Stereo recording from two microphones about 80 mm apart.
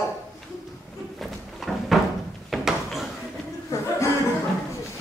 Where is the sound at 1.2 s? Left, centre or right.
Centre.